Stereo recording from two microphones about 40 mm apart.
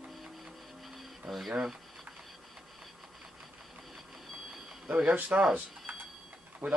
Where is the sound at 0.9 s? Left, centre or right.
Centre.